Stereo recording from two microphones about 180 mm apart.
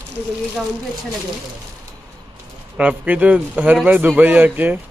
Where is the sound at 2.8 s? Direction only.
10° right (ahead or behind).